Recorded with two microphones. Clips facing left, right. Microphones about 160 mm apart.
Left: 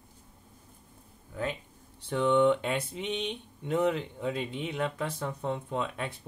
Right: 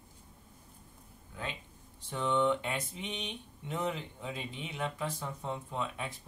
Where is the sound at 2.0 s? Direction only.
65° left (ahead or behind).